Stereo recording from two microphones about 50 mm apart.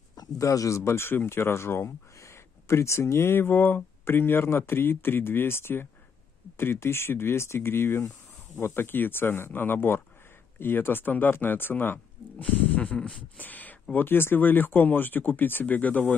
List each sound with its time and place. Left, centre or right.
0.5 s speech: left
12.4 s speech: left
13.4 s speech: left
13.9 s speech: left